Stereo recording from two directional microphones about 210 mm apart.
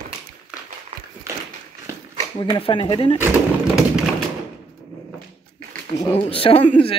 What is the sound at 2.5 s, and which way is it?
Speech, 25° left (ahead or behind).